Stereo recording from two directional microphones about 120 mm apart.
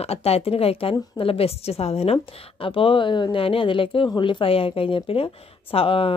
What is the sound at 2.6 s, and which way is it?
A woman's voice, 45° left (ahead or behind).